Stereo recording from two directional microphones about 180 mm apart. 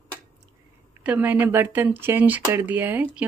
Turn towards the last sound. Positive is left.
turn(degrees=-10)  # may be behind; listen again after turning